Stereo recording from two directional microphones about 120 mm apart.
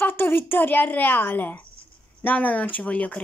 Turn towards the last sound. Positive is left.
turn(degrees=10)  # may be behind; listen again after turning